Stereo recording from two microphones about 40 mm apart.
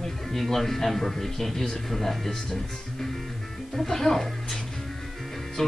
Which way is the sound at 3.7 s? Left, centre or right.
Centre.